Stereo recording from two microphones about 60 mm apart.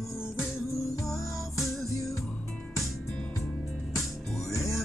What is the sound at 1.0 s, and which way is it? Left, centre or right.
Music, centre.